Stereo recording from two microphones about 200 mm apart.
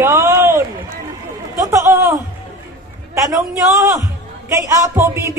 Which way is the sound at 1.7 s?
15° right (ahead or behind).